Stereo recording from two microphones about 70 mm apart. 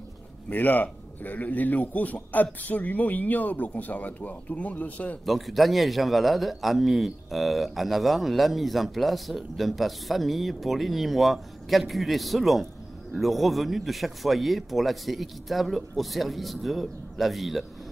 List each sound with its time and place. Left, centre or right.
0.5 s a man's voice: left
5.2 s a man's voice: centre